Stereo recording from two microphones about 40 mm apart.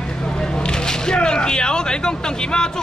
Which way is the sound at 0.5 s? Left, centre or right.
Centre.